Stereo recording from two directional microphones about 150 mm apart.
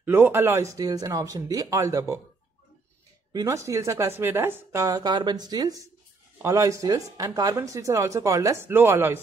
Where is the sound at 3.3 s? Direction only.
20° right (ahead or behind).